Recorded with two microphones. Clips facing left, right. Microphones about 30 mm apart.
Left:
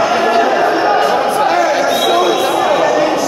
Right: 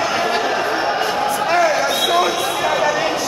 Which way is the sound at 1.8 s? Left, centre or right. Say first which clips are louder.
Left 4 dB; centre.